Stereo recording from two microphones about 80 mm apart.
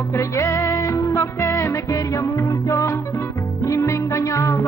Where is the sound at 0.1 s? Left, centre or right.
Left.